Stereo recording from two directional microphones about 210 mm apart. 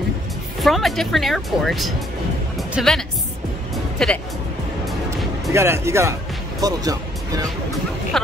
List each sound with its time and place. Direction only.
0.6 s speech: centre (ahead or behind)
2.5 s music: centre (ahead or behind)
5.5 s speech: 15° right (ahead or behind)